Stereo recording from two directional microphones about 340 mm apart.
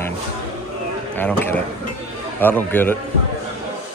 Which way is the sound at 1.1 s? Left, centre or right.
Centre.